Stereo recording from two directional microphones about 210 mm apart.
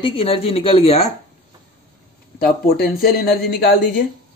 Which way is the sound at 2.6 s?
45° left (ahead or behind).